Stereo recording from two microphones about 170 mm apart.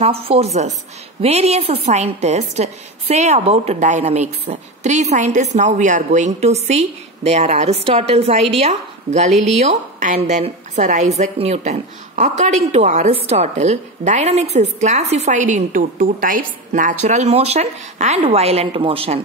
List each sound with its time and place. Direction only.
0.0 s a woman's voice: 35° right (ahead or behind)